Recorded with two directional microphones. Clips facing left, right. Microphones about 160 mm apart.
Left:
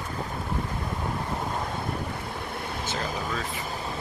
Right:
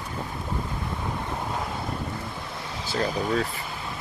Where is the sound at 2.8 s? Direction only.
40° right (ahead or behind).